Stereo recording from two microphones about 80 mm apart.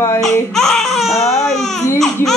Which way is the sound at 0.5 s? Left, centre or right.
Centre.